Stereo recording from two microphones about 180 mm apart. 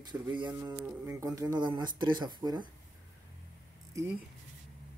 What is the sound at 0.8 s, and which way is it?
Speech, 5° right (ahead or behind).